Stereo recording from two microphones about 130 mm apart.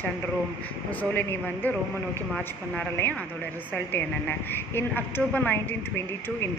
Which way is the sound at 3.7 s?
15° left (ahead or behind).